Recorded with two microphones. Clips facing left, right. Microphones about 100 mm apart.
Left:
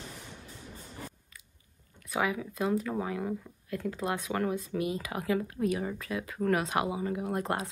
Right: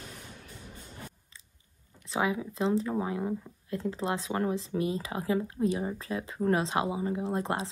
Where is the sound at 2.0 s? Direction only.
25° right (ahead or behind).